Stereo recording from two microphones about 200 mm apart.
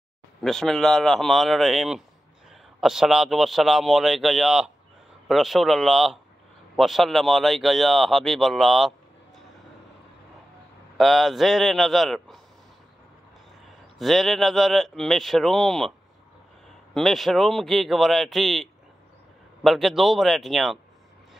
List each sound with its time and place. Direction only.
0.4 s speech: centre (ahead or behind)
11.0 s speech: centre (ahead or behind)
13.9 s speech: centre (ahead or behind)
16.9 s speech: centre (ahead or behind)